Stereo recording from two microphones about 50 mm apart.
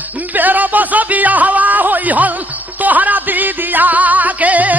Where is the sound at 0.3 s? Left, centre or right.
Right.